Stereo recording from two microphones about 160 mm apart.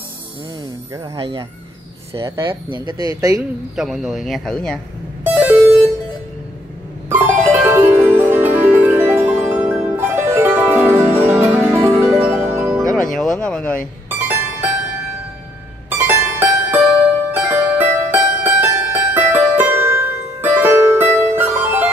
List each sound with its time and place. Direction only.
1.1 s speech: 35° right (ahead or behind)
2.1 s speech: 15° right (ahead or behind)
2.4 s speech: 30° right (ahead or behind)
3.7 s speech: 5° right (ahead or behind)
5.2 s music: 10° right (ahead or behind)
7.1 s music: 10° right (ahead or behind)
12.9 s a sound: 5° left (ahead or behind)
14.0 s music: 15° right (ahead or behind)
15.9 s music: 15° right (ahead or behind)